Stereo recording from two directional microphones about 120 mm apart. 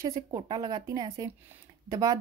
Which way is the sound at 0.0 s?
25° right (ahead or behind).